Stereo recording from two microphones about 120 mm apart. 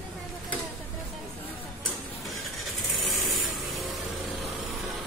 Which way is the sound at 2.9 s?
Centre (ahead or behind).